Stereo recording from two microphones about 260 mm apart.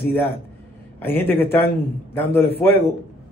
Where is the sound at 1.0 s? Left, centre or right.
Centre.